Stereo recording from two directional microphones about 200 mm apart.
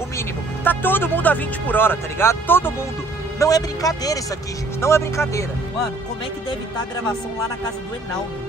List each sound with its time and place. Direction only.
0.7 s speech: 10° left (ahead or behind)